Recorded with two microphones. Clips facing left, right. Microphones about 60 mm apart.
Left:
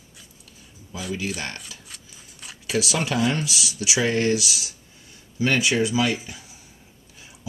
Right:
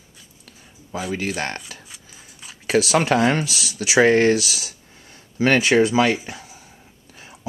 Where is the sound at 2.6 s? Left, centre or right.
Right.